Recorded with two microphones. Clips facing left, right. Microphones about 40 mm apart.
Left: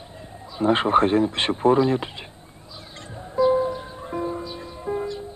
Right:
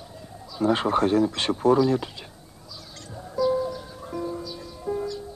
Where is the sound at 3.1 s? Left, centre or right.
Left.